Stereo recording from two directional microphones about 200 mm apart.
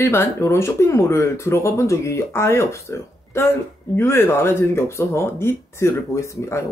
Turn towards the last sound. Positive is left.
turn(degrees=15)  # may be behind; listen again after turning